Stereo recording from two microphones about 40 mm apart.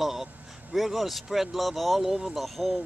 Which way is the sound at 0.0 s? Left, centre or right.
Centre.